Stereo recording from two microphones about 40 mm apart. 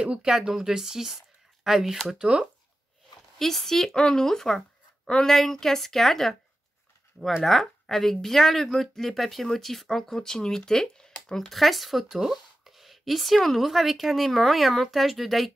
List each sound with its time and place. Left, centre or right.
0.0 s speech: right
0.3 s speech: centre
3.3 s speech: centre
7.4 s speech: centre